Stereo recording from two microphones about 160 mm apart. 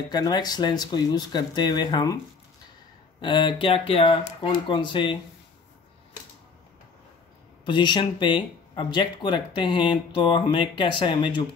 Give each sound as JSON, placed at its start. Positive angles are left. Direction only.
{"t": 0.1, "sound": "speech", "side_deg": 25}
{"t": 3.2, "sound": "speech", "side_deg": 30}
{"t": 7.6, "sound": "speech", "side_deg": 30}